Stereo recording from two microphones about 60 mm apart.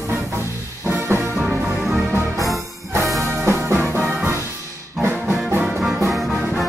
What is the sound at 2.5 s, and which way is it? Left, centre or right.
Music, right.